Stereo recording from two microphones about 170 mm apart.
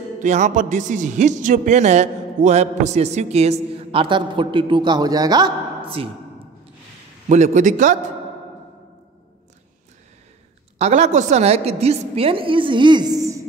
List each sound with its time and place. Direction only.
0.2 s a man's voice: 45° right (ahead or behind); by 6.0 s 30° right (ahead or behind)
7.2 s a man's voice: 45° right (ahead or behind)
10.8 s a man's voice: 40° right (ahead or behind); by 13.4 s 20° right (ahead or behind)